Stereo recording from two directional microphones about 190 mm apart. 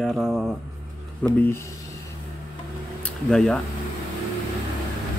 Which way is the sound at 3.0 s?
5° left (ahead or behind).